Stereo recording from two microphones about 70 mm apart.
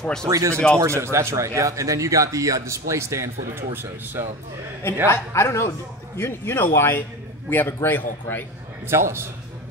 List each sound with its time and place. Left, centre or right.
0.3 s a man's voice: right
5.0 s a man's voice: left
8.8 s a man's voice: right